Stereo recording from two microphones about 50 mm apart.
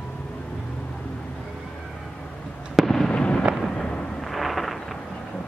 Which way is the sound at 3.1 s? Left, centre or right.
Left.